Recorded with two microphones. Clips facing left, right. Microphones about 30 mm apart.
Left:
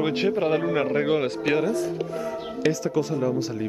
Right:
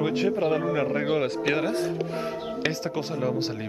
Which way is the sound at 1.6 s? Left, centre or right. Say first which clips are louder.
Left 1 dB; right.